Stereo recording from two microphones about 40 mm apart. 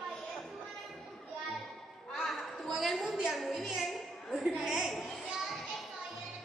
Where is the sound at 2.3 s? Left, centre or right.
Centre.